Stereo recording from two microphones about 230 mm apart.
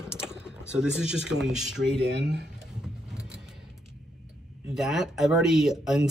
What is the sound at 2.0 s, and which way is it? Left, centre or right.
Speech, right.